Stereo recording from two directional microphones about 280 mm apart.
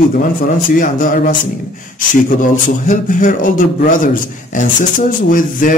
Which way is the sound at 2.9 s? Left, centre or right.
Left.